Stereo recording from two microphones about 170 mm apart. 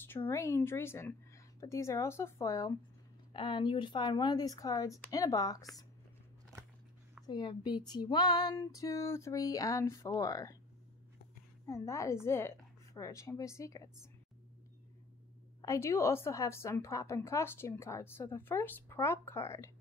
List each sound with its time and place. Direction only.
0.0 s a woman's voice: 10° left (ahead or behind)
3.3 s female singing: 30° left (ahead or behind)
7.2 s female singing: 25° left (ahead or behind)
11.6 s a woman's voice: 15° left (ahead or behind)
15.6 s a woman's voice: 15° left (ahead or behind)